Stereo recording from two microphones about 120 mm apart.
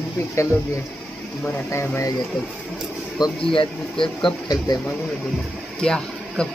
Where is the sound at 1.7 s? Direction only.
25° left (ahead or behind).